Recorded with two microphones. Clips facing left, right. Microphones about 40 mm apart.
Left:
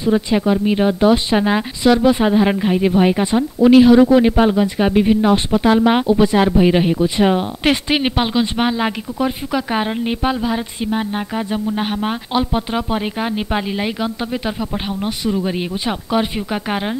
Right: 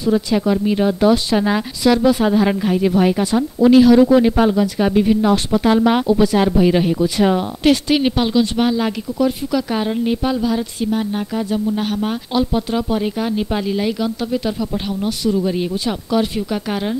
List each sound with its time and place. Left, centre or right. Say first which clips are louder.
0.0 s speech: left 1 dB; left